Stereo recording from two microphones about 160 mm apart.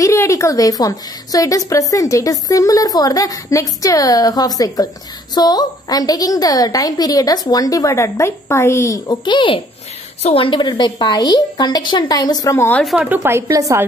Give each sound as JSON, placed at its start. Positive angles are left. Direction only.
{"t": 0.0, "sound": "a woman's voice", "side_deg": 20}
{"t": 12.8, "sound": "a woman's voice", "side_deg": -5}
{"t": 13.2, "sound": "speech", "side_deg": -20}